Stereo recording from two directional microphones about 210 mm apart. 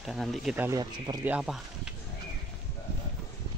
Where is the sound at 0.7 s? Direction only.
20° right (ahead or behind).